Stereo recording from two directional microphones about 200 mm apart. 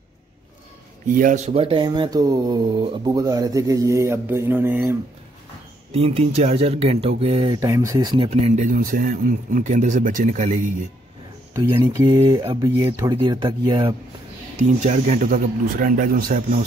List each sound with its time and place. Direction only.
1.0 s speech: 40° right (ahead or behind); by 4.9 s 10° right (ahead or behind)
5.9 s speech: 30° right (ahead or behind)
11.7 s speech: 20° right (ahead or behind)
14.6 s speech: 35° right (ahead or behind)